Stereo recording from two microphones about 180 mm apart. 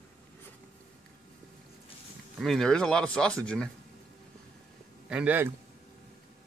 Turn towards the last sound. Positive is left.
turn(degrees=-10)  # may be behind; listen again after turning